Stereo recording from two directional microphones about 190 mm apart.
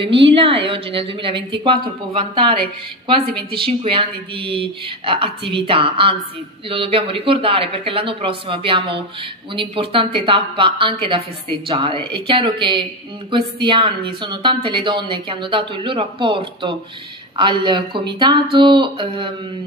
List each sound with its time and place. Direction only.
0.0 s a woman's voice: 30° right (ahead or behind)